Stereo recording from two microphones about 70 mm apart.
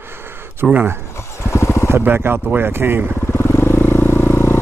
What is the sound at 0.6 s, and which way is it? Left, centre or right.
Speech, centre.